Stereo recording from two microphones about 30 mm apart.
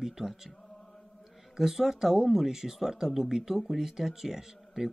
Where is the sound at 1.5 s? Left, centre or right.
Centre.